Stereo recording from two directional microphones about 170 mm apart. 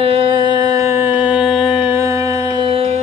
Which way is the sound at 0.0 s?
35° right (ahead or behind).